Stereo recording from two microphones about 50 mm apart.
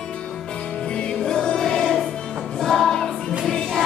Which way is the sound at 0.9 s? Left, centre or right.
Centre.